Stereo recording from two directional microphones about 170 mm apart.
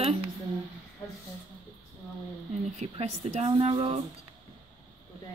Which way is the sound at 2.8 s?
40° right (ahead or behind).